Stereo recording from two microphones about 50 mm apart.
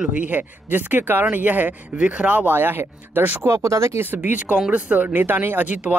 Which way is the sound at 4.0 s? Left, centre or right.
Right.